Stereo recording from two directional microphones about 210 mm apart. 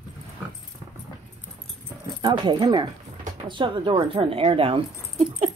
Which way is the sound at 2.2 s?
20° right (ahead or behind).